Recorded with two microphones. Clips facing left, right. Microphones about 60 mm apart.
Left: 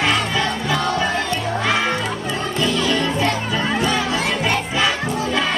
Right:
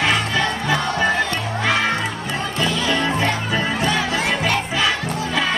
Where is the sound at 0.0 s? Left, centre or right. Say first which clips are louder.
Even; centre.